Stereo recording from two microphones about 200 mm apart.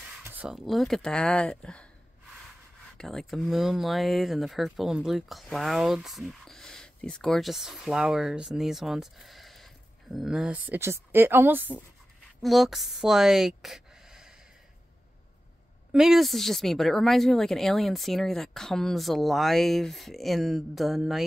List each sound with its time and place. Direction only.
0.2 s speech: 10° right (ahead or behind)
3.0 s a woman's voice: centre (ahead or behind)
15.9 s speech: centre (ahead or behind)